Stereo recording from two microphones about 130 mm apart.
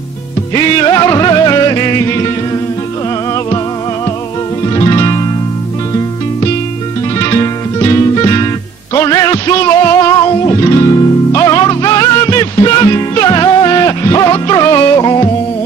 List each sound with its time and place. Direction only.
0.6 s music: 30° left (ahead or behind)
4.6 s music: 30° left (ahead or behind)
7.2 s music: 25° left (ahead or behind)